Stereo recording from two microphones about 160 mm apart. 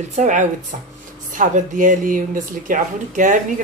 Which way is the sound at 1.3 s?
55° right (ahead or behind).